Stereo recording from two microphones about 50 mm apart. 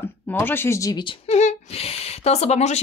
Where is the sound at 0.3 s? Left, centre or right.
Left.